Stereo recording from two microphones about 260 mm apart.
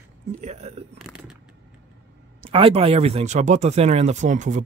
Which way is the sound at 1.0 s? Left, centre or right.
Centre.